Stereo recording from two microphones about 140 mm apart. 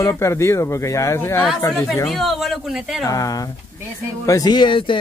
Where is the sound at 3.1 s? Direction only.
25° left (ahead or behind).